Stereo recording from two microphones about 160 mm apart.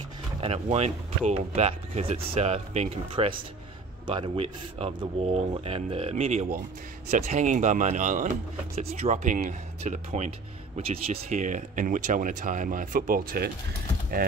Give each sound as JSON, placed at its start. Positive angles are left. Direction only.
{"t": 0.4, "sound": "speech", "side_deg": -40}
{"t": 6.2, "sound": "speech", "side_deg": -50}